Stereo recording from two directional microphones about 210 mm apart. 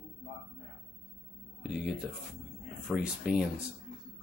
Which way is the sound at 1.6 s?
Centre (ahead or behind).